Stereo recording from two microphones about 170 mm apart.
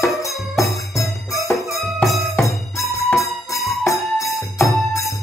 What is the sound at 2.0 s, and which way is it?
Music, centre (ahead or behind).